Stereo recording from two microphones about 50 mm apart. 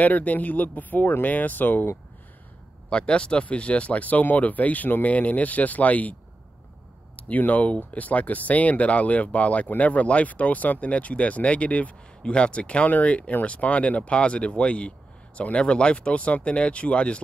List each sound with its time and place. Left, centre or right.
0.0 s speech: left
2.9 s speech: left
7.2 s speech: left